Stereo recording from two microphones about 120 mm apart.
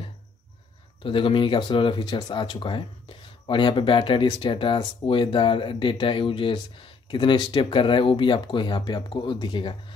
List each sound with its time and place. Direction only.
1.0 s speech: 45° left (ahead or behind)